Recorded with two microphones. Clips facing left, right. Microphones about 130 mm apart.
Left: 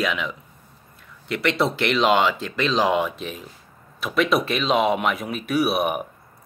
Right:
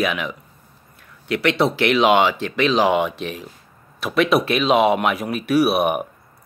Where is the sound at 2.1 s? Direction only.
55° right (ahead or behind).